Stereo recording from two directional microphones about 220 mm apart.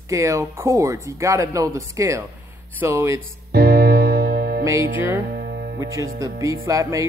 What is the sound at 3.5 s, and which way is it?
Music, 45° right (ahead or behind).